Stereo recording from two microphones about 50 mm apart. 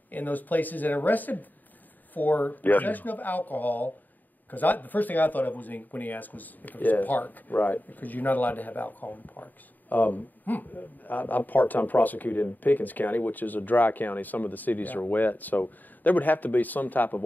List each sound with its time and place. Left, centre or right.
0.1 s speech: left